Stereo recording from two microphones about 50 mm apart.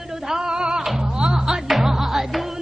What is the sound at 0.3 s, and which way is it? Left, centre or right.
Music, centre.